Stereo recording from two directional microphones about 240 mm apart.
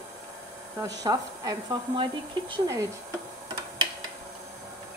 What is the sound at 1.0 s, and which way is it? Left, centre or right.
Speech, centre.